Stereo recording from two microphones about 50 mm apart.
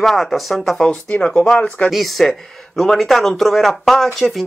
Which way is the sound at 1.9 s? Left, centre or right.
Centre.